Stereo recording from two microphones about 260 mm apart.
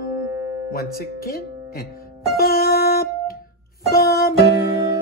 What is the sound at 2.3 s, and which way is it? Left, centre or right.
Music, left.